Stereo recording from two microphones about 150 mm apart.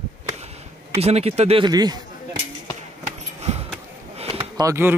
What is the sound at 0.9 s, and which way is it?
Speech, 45° right (ahead or behind).